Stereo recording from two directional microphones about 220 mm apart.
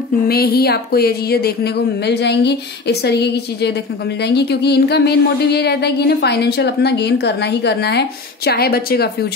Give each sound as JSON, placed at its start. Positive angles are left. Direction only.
{"t": 0.3, "sound": "speech", "side_deg": 45}